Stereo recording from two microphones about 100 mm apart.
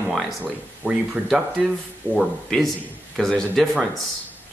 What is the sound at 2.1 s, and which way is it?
A man's voice, centre (ahead or behind).